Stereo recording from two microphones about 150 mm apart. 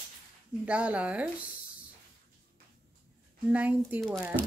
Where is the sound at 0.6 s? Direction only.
10° right (ahead or behind).